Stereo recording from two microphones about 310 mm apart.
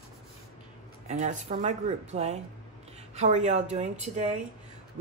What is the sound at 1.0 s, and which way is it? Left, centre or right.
Speech, right.